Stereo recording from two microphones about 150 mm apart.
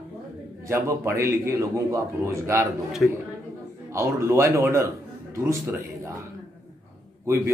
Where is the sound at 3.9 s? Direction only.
20° right (ahead or behind).